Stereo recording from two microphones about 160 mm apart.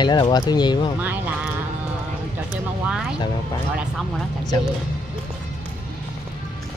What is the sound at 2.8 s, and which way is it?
Speech, 5° right (ahead or behind).